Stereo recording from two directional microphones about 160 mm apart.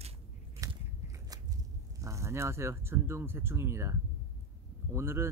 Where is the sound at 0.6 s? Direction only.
20° right (ahead or behind).